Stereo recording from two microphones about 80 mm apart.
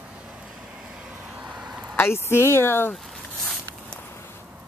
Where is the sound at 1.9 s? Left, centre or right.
Left.